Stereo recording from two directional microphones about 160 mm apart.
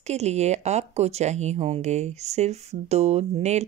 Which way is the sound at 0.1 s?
45° right (ahead or behind).